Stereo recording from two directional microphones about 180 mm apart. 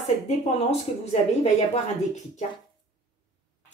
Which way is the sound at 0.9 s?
35° left (ahead or behind).